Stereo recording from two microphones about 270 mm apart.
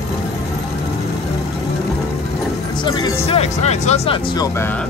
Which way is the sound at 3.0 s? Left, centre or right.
Left.